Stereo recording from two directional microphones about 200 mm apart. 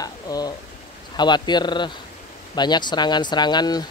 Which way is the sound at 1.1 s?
20° left (ahead or behind).